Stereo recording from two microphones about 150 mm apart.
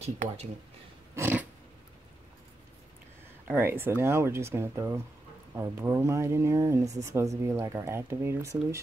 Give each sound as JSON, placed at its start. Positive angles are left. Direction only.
{"t": 0.0, "sound": "speech", "side_deg": -45}
{"t": 1.1, "sound": "a sound", "side_deg": -15}
{"t": 3.4, "sound": "speech", "side_deg": -15}